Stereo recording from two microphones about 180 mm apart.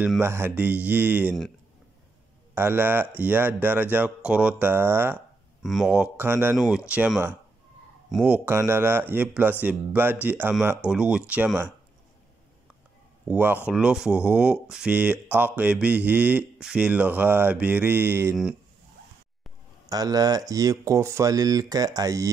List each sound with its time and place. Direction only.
0.0 s speech: 10° right (ahead or behind)
2.5 s speech: 10° right (ahead or behind)
5.6 s speech: centre (ahead or behind)
13.3 s speech: 10° right (ahead or behind)
19.9 s speech: 20° right (ahead or behind)